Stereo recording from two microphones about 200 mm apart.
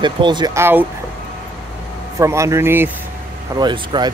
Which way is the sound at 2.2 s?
15° right (ahead or behind).